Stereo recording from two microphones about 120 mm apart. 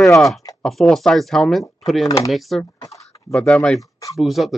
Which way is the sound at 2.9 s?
25° left (ahead or behind).